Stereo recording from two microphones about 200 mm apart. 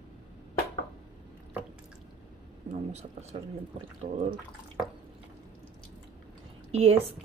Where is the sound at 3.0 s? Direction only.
35° right (ahead or behind).